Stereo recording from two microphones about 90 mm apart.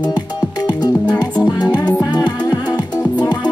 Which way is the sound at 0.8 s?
50° left (ahead or behind).